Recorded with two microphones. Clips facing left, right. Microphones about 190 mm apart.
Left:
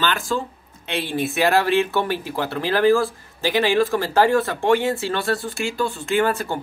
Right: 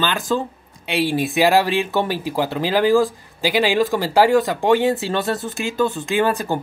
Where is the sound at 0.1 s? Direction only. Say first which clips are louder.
Right 3 dB; 20° right (ahead or behind).